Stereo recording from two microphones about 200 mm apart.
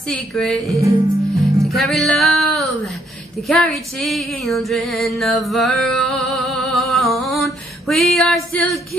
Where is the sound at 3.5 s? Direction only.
Centre (ahead or behind).